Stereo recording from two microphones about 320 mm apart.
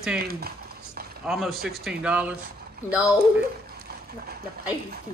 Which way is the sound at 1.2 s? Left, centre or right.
Centre.